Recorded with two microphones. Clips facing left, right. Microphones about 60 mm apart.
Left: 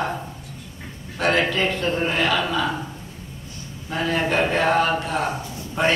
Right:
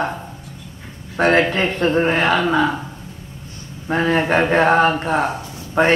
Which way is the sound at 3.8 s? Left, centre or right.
Right.